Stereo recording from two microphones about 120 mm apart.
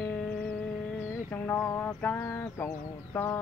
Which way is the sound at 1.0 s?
20° left (ahead or behind).